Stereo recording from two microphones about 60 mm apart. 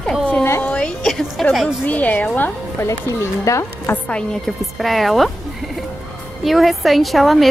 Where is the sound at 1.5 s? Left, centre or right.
Centre.